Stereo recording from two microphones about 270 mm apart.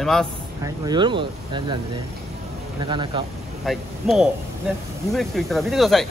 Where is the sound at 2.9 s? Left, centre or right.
Centre.